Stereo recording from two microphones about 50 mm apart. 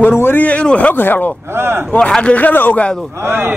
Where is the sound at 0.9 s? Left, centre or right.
Left.